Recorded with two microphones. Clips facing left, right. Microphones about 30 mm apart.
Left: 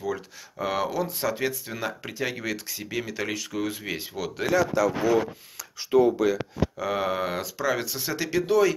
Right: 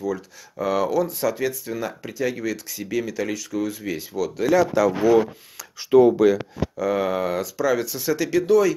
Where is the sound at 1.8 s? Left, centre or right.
Left.